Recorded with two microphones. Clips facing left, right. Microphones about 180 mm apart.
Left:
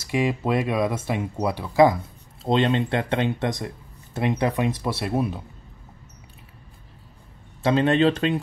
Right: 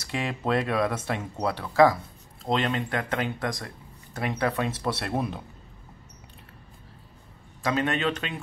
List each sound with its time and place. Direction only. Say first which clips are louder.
0.1 s speech: left 4 dB; 10° left (ahead or behind)
2.4 s speech: left 5 dB; 25° left (ahead or behind); by 5.4 s 5° left (ahead or behind)
7.6 s a man's voice: left 7 dB; 30° left (ahead or behind)